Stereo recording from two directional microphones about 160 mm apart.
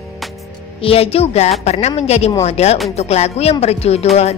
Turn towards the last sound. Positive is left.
turn(degrees=40)  # may be behind; listen again after turning